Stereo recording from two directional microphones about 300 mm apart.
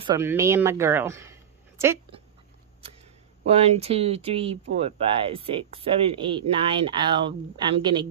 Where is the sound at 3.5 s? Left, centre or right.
Centre.